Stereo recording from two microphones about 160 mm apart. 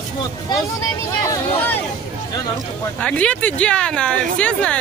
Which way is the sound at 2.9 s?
5° left (ahead or behind).